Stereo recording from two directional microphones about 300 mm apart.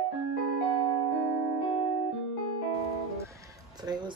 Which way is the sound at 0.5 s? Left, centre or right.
Right.